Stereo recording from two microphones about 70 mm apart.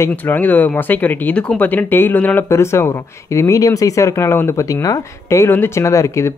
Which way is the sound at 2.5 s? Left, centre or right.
Left.